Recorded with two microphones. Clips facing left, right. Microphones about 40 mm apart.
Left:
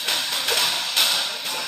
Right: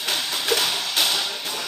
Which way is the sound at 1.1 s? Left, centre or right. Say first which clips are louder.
Even; centre.